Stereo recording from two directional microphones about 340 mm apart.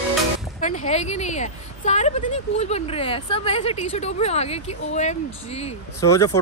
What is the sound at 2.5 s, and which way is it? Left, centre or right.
Speech, centre.